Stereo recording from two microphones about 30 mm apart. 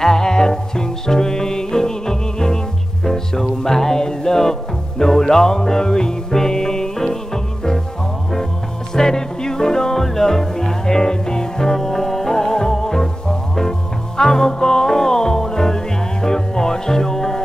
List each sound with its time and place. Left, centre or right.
0.0 s music: centre
8.9 s music: left